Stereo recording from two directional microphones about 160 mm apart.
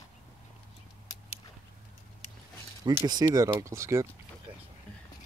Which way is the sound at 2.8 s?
25° right (ahead or behind).